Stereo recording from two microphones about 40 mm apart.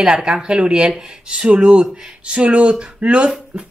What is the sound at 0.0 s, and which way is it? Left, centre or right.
A woman's voice, right.